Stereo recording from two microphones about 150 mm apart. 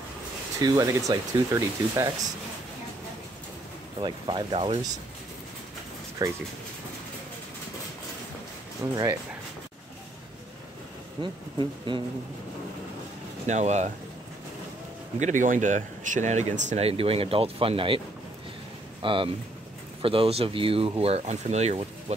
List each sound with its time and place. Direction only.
0.6 s speech: 25° right (ahead or behind)
4.0 s speech: 35° right (ahead or behind)
6.2 s speech: 25° right (ahead or behind)
8.8 s speech: 20° right (ahead or behind)
11.1 s speech: 30° right (ahead or behind)
13.5 s speech: 50° right (ahead or behind)
15.1 s speech: 55° right (ahead or behind)